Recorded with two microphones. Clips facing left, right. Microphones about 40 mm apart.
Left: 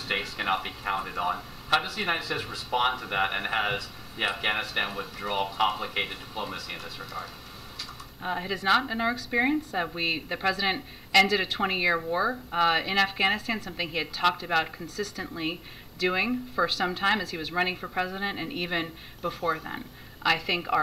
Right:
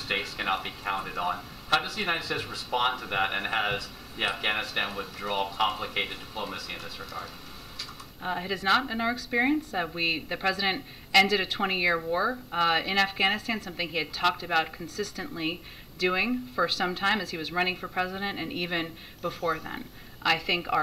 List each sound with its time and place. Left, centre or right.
0.1 s a woman's voice: centre